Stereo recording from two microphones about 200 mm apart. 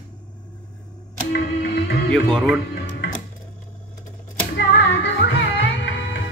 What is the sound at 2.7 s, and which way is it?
Music, 60° left (ahead or behind).